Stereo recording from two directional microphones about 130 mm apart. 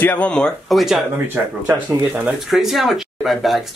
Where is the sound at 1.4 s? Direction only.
15° right (ahead or behind).